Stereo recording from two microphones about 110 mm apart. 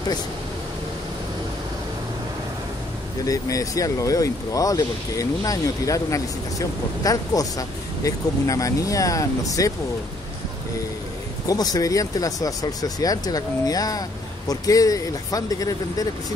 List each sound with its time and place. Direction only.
3.3 s speech: 30° left (ahead or behind)
11.4 s speech: 35° left (ahead or behind)